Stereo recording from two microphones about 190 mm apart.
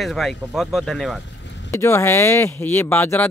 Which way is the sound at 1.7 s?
15° left (ahead or behind).